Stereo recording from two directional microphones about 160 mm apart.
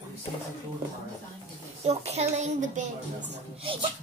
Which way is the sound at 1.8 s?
40° right (ahead or behind).